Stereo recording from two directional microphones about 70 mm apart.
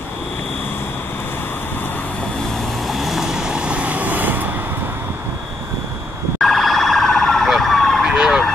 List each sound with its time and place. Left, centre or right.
2.9 s vehicle: centre; by 4.5 s right
6.4 s emergency vehicle: centre
8.1 s emergency vehicle: centre